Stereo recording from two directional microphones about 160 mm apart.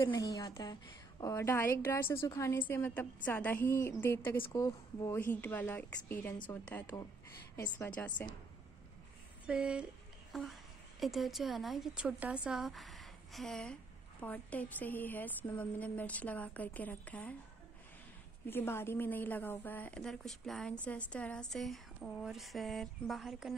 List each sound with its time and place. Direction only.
0.0 s a woman's voice: 25° left (ahead or behind)
9.5 s a woman's voice: 5° right (ahead or behind); by 17.4 s 10° left (ahead or behind)
18.5 s a woman's voice: 15° left (ahead or behind)